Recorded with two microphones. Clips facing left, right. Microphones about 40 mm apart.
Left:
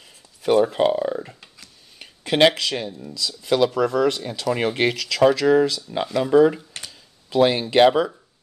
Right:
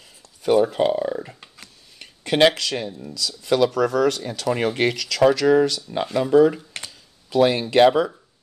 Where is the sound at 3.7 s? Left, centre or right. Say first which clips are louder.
Even; left.